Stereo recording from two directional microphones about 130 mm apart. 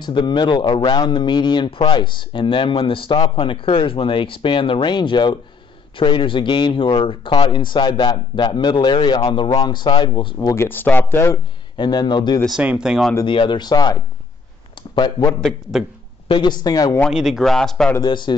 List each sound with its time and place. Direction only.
0.0 s a man's voice: 35° left (ahead or behind)
10.5 s speech: 15° left (ahead or behind)
11.7 s a man's voice: 35° left (ahead or behind)
12.4 s speech: 5° right (ahead or behind)
13.2 s a man's voice: 40° left (ahead or behind)
17.1 s speech: 5° right (ahead or behind)
18.0 s a man's voice: 35° left (ahead or behind)